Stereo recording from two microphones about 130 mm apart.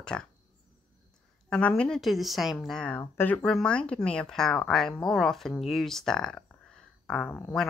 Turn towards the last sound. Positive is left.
turn(degrees=10)  # may be behind; listen again after turning